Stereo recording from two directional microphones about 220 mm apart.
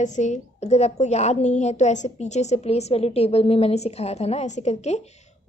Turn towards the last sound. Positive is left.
turn(degrees=30)  # may be behind; listen again after turning